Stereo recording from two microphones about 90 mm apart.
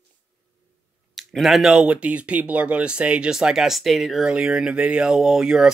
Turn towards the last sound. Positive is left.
turn(degrees=-5)  # may be behind; listen again after turning